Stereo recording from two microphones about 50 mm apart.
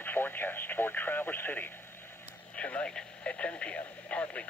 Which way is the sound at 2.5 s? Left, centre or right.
Left.